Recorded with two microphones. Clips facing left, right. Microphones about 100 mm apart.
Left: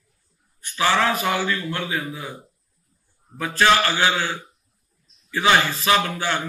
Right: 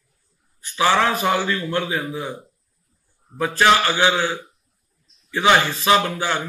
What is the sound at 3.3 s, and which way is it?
A man's voice, 20° right (ahead or behind).